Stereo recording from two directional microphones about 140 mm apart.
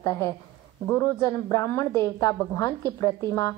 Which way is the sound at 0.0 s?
25° left (ahead or behind).